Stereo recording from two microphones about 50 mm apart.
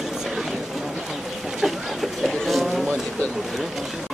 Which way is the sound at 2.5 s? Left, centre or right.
Centre.